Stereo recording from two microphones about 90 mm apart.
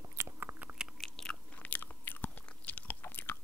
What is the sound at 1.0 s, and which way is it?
Chewing, 5° left (ahead or behind).